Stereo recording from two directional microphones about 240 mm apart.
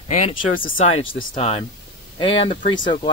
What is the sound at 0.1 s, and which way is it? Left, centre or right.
Speech, left.